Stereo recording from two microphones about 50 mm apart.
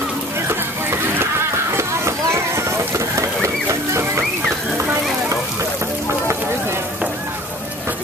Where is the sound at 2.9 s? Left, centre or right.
Right.